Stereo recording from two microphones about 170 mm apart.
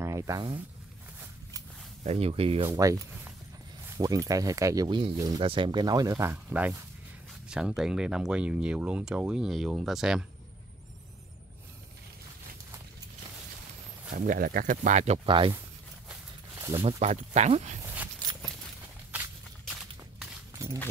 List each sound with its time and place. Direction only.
0.0 s speech: 15° right (ahead or behind)
2.0 s speech: 35° right (ahead or behind)
2.7 s speech: 20° right (ahead or behind)
6.3 s speech: 10° right (ahead or behind)
14.1 s speech: 50° right (ahead or behind)
15.2 s speech: 30° right (ahead or behind)
17.0 s speech: 40° right (ahead or behind)
17.8 s dog: 10° right (ahead or behind)
19.7 s a sound: 5° right (ahead or behind)
20.6 s a sound: 15° right (ahead or behind)